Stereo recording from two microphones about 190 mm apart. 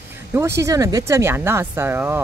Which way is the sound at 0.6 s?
15° right (ahead or behind).